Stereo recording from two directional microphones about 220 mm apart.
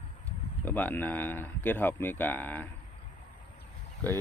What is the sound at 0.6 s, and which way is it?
Speech, 10° left (ahead or behind).